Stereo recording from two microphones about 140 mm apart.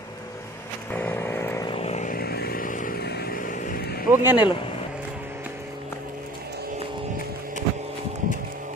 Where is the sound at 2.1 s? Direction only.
90° left.